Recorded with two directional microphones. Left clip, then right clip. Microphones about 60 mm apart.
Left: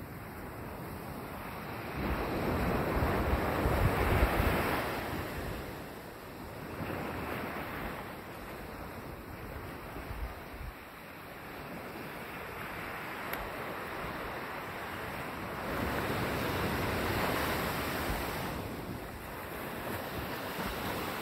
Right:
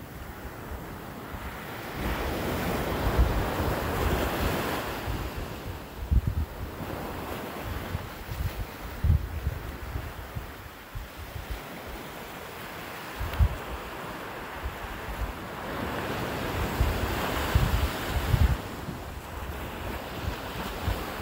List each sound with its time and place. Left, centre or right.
2.0 s waves: centre
3.8 s waves: left
6.9 s waves: centre
15.6 s waves: left
19.9 s waves: left